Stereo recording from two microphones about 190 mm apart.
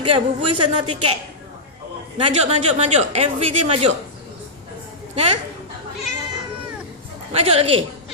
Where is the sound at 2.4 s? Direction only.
35° right (ahead or behind).